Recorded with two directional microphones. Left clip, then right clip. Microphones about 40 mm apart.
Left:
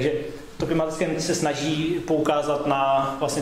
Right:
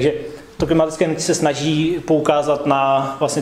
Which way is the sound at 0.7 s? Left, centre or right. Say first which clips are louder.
Right 7 dB; right.